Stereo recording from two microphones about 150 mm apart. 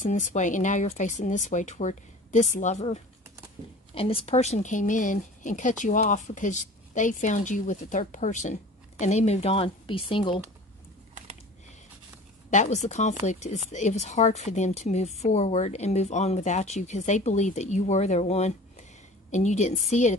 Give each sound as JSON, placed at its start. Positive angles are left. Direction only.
{"t": 0.0, "sound": "a woman's voice", "side_deg": 55}
{"t": 12.4, "sound": "speech", "side_deg": 50}